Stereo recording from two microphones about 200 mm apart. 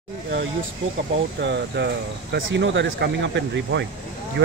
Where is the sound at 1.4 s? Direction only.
60° right (ahead or behind).